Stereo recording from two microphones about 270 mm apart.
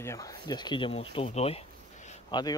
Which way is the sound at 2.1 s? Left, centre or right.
Centre.